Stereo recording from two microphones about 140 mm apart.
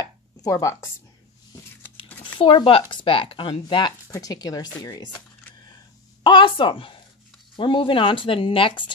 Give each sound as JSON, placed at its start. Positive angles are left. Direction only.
{"t": 0.0, "sound": "chopping", "side_deg": 25}
{"t": 2.3, "sound": "speech", "side_deg": 40}
{"t": 6.2, "sound": "speech", "side_deg": 35}